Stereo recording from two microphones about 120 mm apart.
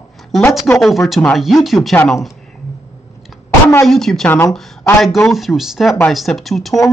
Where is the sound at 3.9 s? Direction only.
5° left (ahead or behind).